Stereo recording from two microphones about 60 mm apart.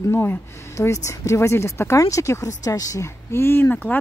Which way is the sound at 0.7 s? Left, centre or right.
Left.